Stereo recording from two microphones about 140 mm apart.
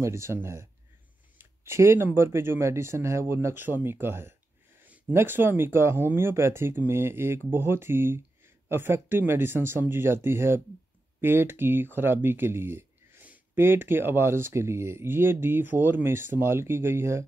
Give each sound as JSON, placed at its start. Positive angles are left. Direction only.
{"t": 0.0, "sound": "speech", "side_deg": -20}